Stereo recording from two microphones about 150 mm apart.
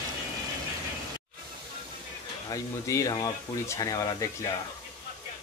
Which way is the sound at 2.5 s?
20° left (ahead or behind).